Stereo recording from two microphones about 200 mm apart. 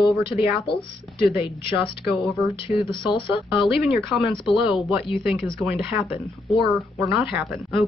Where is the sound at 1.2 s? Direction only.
25° left (ahead or behind).